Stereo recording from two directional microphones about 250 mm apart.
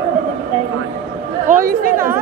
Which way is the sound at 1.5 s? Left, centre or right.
Right.